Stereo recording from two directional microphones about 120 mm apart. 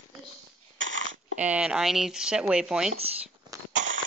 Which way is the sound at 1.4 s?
10° right (ahead or behind).